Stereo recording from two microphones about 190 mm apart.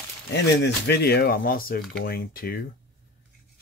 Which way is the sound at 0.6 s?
65° left (ahead or behind).